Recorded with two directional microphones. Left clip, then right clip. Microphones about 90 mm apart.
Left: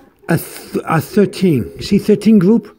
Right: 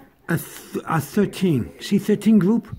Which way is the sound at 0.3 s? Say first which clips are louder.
Left 8 dB; 50° left (ahead or behind).